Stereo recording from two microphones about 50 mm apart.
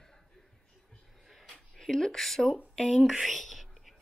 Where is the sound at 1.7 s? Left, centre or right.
Centre.